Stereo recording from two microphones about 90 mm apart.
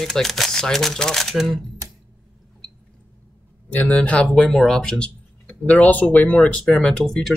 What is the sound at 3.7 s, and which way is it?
Speech, 15° left (ahead or behind).